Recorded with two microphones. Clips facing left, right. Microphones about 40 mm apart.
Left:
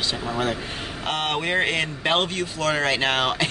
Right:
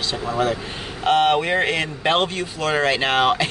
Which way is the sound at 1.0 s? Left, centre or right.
Centre.